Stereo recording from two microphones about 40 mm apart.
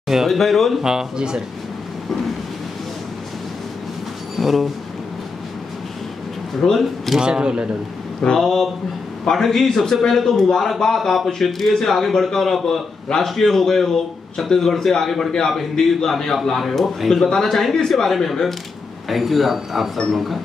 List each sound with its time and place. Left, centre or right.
0.3 s speech: centre
0.8 s speech: centre
4.4 s speech: centre
6.6 s a man's voice: centre
7.2 s speech: right
8.4 s a man's voice: centre